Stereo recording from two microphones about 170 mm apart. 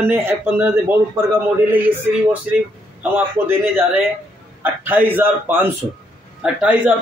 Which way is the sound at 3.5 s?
15° right (ahead or behind).